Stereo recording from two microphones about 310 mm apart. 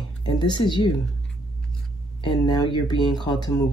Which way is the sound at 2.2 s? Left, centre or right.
Centre.